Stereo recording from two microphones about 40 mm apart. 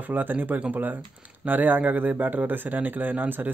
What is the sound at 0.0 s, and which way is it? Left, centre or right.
Speech, right.